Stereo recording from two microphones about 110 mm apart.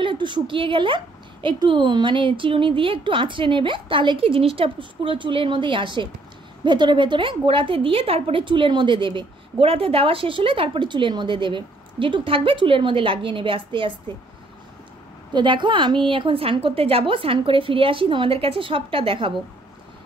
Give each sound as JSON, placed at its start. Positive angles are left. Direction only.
{"t": 0.0, "sound": "a woman's voice", "side_deg": -50}
{"t": 15.3, "sound": "a woman's voice", "side_deg": -45}